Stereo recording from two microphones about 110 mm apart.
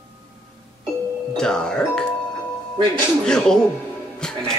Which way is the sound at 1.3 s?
5° left (ahead or behind).